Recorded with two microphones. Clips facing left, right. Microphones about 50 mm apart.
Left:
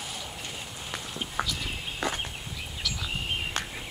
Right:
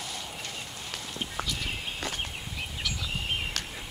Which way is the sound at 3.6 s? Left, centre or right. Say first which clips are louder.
Left 3 dB; left.